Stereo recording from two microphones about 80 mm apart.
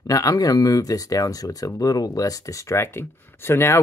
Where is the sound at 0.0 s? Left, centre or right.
Left.